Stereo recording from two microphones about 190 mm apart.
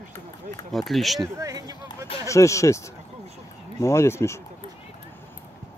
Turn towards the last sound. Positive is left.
turn(degrees=15)  # may be behind; listen again after turning